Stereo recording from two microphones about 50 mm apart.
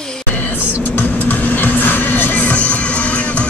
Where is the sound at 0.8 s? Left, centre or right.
Left.